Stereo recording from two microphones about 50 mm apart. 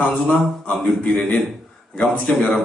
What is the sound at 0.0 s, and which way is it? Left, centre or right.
A man's voice, left.